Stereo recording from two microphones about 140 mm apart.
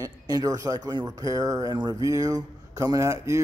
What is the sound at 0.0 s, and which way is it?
Speech, 25° right (ahead or behind).